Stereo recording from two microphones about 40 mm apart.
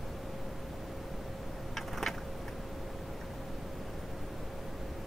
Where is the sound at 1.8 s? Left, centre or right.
Centre.